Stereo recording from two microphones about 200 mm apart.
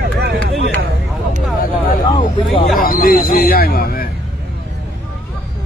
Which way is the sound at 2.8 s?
45° left (ahead or behind).